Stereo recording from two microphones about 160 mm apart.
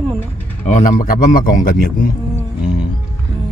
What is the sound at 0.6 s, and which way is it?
Speech, 50° left (ahead or behind).